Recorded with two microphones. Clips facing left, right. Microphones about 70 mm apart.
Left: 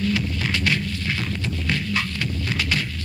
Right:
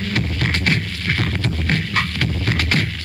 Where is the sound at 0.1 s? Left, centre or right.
Right.